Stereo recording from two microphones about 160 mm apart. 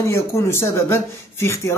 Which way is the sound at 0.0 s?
15° left (ahead or behind).